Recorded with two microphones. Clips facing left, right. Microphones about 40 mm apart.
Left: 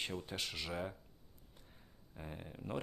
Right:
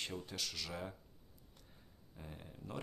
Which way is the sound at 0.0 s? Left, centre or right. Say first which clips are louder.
Left 2 dB; centre.